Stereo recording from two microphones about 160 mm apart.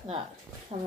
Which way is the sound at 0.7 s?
30° right (ahead or behind).